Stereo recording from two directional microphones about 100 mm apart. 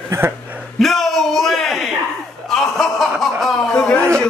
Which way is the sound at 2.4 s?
5° left (ahead or behind).